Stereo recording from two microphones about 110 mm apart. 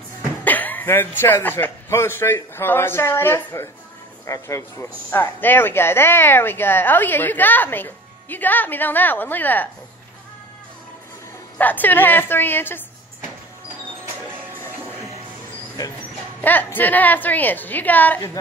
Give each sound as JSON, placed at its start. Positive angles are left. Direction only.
{"t": 0.4, "sound": "a woman's voice", "side_deg": 15}
{"t": 11.5, "sound": "a woman's voice", "side_deg": 15}
{"t": 15.8, "sound": "speech", "side_deg": 35}
{"t": 16.3, "sound": "a woman's voice", "side_deg": 15}